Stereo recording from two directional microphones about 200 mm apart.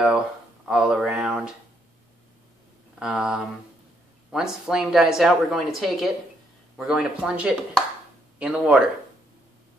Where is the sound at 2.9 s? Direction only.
5° right (ahead or behind).